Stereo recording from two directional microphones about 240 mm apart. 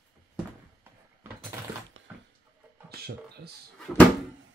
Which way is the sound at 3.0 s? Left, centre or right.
Right.